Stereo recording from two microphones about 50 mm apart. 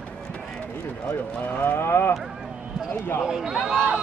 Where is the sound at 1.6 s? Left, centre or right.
Left.